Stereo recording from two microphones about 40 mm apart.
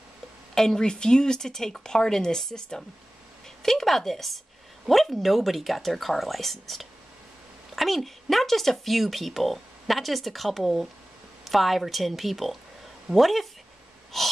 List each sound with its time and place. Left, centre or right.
0.6 s speech: centre
3.4 s a sound: centre
4.8 s speech: centre
14.1 s wheeze: centre